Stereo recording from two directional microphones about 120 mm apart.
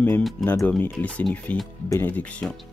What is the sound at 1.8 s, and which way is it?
Speech, 25° left (ahead or behind).